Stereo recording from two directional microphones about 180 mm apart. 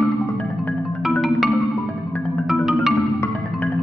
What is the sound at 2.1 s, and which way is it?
Music, centre (ahead or behind).